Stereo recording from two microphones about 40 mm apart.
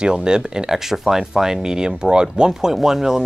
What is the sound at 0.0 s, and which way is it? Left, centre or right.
Speech, right.